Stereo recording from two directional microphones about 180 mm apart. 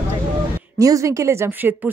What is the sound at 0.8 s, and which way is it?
Speech, 20° right (ahead or behind).